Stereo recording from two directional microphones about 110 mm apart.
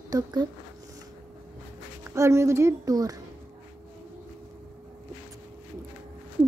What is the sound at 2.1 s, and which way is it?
Speech, 25° right (ahead or behind).